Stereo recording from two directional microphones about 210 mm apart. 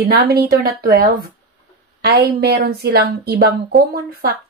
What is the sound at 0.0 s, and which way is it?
Speech, 50° right (ahead or behind).